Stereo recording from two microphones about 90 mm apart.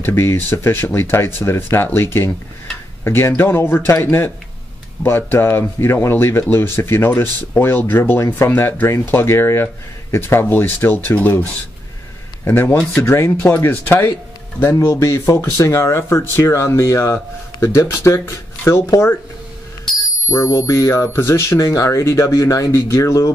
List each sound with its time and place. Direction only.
0.0 s speech: 25° left (ahead or behind)
12.4 s speech: 25° left (ahead or behind); by 19.1 s 45° left (ahead or behind)
20.2 s speech: 35° left (ahead or behind)